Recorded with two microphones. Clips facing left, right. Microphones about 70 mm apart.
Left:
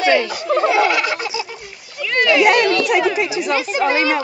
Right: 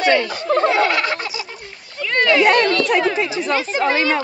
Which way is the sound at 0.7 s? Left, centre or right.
Right.